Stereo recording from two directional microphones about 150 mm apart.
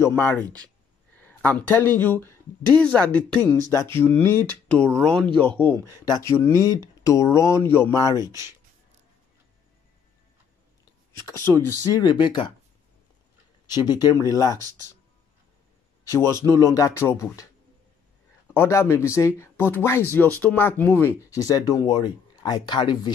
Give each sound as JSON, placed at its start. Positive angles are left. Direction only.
{"t": 0.0, "sound": "speech", "side_deg": 15}
{"t": 8.2, "sound": "speech", "side_deg": -20}
{"t": 11.1, "sound": "speech", "side_deg": 20}
{"t": 14.0, "sound": "speech", "side_deg": 20}
{"t": 16.1, "sound": "speech", "side_deg": 20}
{"t": 18.5, "sound": "speech", "side_deg": 15}
{"t": 21.3, "sound": "speech", "side_deg": 25}